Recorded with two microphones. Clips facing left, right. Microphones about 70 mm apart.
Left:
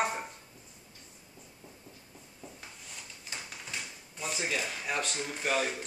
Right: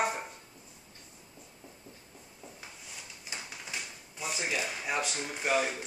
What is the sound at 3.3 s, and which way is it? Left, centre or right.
Speech, centre.